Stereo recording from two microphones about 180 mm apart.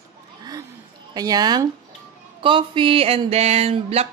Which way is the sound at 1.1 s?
20° right (ahead or behind).